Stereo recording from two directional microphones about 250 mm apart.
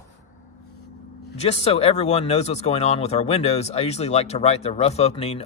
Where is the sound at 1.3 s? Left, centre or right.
Left.